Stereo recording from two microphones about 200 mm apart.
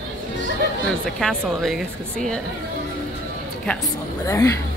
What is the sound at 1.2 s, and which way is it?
A woman's voice, 5° left (ahead or behind).